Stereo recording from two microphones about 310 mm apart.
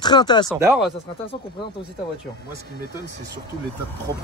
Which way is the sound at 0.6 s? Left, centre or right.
Centre.